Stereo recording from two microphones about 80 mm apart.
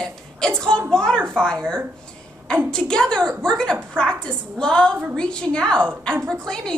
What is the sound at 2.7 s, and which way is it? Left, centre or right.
A woman's voice, centre.